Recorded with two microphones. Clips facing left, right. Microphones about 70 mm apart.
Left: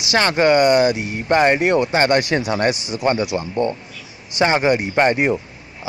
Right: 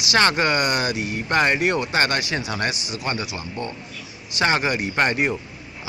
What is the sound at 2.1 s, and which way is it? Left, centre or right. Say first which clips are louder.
Speech: left 7 dB; left.